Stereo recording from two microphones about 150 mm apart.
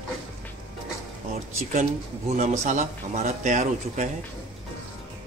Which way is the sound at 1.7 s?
55° right (ahead or behind).